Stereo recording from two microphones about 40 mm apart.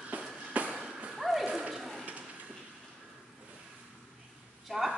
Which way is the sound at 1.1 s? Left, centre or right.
Centre.